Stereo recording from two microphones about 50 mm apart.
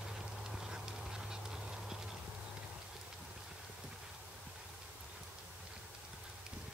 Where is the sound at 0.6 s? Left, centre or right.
Centre.